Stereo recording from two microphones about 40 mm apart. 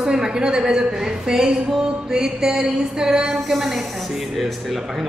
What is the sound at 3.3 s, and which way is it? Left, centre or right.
Speech, centre.